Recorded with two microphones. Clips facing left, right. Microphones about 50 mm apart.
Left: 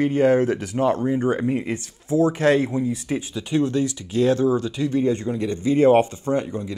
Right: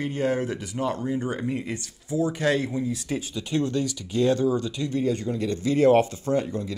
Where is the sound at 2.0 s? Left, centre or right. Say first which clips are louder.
Left 6 dB; left.